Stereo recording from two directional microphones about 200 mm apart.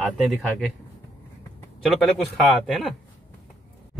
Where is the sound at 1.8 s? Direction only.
Centre (ahead or behind).